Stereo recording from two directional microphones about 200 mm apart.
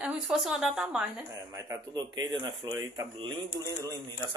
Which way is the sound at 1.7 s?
20° right (ahead or behind).